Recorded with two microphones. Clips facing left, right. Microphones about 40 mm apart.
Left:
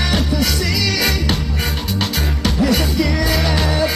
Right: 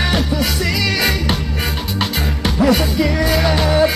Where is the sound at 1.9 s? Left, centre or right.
Centre.